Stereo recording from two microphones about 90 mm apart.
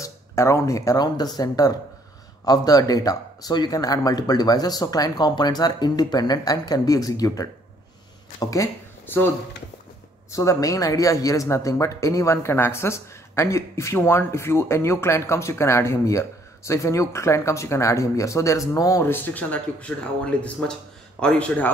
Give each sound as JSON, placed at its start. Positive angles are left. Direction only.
{"t": 0.0, "sound": "speech", "side_deg": 35}
{"t": 9.0, "sound": "speech", "side_deg": 25}
{"t": 10.3, "sound": "speech", "side_deg": 35}
{"t": 19.0, "sound": "speech", "side_deg": 20}